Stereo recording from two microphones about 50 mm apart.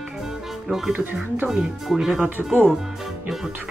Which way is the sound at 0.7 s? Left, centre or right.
Centre.